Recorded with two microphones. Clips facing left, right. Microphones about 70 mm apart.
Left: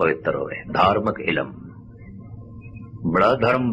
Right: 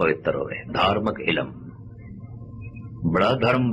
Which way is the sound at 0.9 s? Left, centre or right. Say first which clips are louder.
Left 3 dB; centre.